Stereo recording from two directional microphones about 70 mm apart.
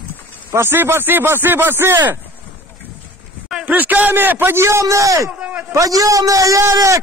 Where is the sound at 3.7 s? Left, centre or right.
Right.